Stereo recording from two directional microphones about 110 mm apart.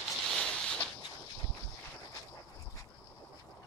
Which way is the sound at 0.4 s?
10° left (ahead or behind).